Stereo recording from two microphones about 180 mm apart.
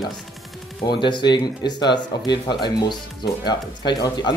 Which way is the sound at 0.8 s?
25° left (ahead or behind).